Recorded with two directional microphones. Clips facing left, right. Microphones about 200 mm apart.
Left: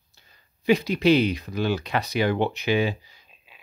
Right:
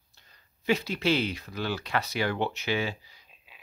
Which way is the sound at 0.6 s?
15° left (ahead or behind).